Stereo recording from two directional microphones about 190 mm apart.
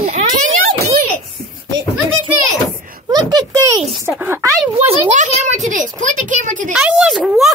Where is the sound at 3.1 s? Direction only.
20° right (ahead or behind).